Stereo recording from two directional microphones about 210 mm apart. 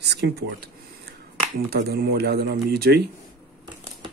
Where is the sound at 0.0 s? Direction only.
50° right (ahead or behind).